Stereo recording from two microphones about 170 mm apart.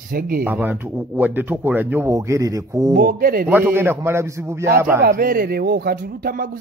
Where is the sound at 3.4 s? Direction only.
10° right (ahead or behind).